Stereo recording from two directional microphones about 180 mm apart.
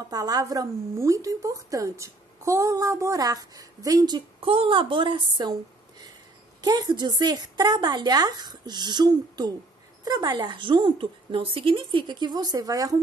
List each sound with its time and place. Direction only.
0.1 s a woman's voice: 20° right (ahead or behind)